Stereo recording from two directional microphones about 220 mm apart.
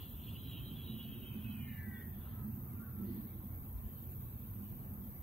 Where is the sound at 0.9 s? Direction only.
30° right (ahead or behind).